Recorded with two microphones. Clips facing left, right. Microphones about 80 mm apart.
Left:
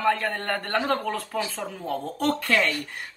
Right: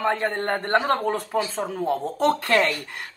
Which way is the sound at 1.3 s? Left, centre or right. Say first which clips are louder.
Right 4 dB; right.